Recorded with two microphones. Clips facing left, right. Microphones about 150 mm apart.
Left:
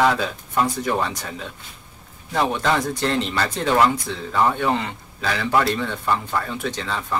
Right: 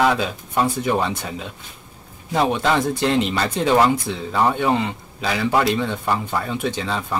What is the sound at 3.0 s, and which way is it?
A man's voice, 15° right (ahead or behind).